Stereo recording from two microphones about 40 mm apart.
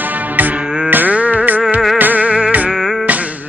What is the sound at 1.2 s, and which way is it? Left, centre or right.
Music, right.